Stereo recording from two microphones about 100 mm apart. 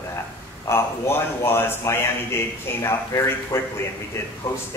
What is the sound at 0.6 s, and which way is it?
A man's voice, 25° left (ahead or behind).